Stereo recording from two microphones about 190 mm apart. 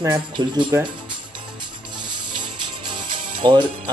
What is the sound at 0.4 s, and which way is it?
Speech, 25° right (ahead or behind).